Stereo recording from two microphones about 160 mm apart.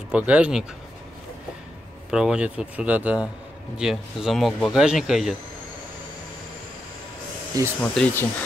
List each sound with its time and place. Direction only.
0.1 s a man's voice: 10° right (ahead or behind)
2.0 s a man's voice: 5° right (ahead or behind)
7.8 s speech: 5° left (ahead or behind)